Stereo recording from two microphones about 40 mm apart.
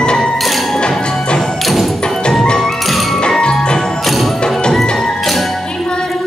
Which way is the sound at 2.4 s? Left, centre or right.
Centre.